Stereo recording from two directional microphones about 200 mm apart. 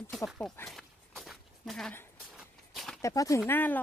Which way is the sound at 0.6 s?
Centre (ahead or behind).